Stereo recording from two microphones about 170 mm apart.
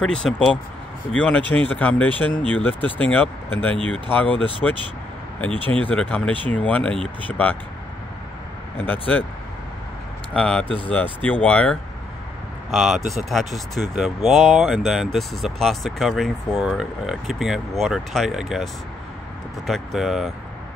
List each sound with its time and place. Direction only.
0.2 s speech: 5° left (ahead or behind)
5.5 s speech: 30° right (ahead or behind)
5.9 s speech: 10° left (ahead or behind)
8.7 s speech: 10° left (ahead or behind)
10.3 s speech: 5° left (ahead or behind)